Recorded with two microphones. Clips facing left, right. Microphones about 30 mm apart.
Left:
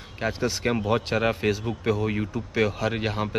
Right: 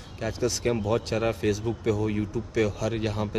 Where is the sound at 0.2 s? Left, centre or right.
Left.